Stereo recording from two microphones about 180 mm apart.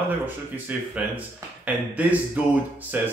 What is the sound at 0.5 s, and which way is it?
Speech, 5° right (ahead or behind).